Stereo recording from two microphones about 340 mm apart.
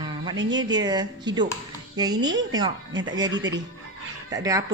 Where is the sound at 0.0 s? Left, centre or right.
Centre.